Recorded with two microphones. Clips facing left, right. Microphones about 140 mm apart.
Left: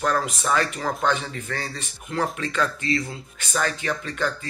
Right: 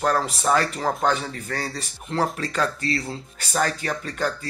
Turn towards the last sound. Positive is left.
turn(degrees=-40)  # may be behind; listen again after turning